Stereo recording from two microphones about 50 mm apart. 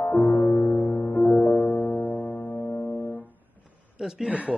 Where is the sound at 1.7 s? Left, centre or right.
Left.